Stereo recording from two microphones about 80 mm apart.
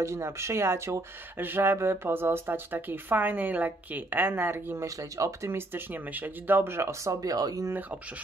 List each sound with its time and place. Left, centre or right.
0.0 s speech: right
4.8 s speech: right